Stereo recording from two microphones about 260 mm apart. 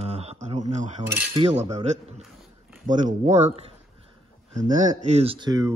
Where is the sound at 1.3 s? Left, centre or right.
Right.